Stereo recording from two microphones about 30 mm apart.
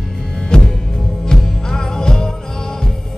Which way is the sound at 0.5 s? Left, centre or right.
Left.